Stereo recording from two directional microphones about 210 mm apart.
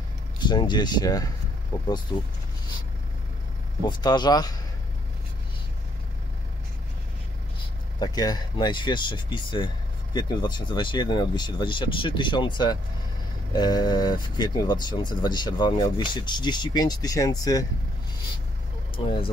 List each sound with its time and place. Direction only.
0.4 s speech: 20° left (ahead or behind)
3.8 s speech: 20° left (ahead or behind)
8.0 s speech: 20° left (ahead or behind)
18.9 s speech: 25° left (ahead or behind)